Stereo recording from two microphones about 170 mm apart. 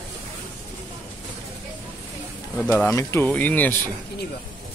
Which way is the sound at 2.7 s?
15° left (ahead or behind).